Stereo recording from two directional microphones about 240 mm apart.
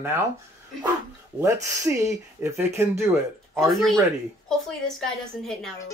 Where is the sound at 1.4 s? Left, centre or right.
Centre.